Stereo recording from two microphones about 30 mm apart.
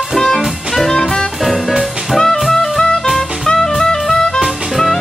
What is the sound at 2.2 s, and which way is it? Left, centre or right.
Music, centre.